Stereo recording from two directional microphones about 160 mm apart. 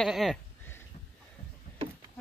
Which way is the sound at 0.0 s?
Centre (ahead or behind).